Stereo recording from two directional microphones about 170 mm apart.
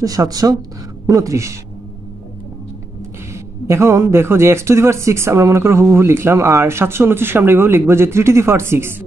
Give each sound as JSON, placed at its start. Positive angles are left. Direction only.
{"t": 0.0, "sound": "speech", "side_deg": -20}
{"t": 3.3, "sound": "speech", "side_deg": -15}